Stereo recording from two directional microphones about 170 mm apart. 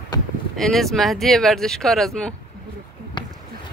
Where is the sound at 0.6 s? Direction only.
Centre (ahead or behind).